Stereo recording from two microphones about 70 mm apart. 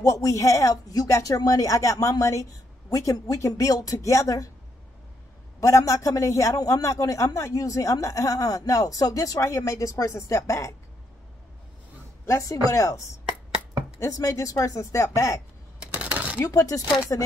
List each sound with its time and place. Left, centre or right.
0.0 s a man's voice: left
5.6 s a man's voice: left
12.3 s a man's voice: left
15.9 s shuffling cards: centre
16.4 s speech: left